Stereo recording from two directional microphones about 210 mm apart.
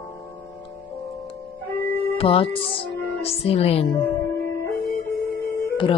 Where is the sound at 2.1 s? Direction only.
25° left (ahead or behind).